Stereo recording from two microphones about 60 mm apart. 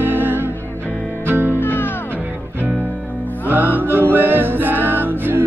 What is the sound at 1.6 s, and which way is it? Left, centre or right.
Music, left.